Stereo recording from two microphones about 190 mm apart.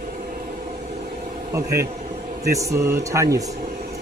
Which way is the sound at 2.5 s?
15° right (ahead or behind).